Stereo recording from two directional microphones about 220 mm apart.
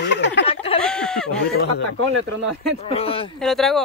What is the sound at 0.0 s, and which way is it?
Chicken, 55° left (ahead or behind).